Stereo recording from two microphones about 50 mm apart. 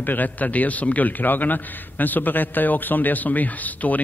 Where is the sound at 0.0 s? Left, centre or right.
Left.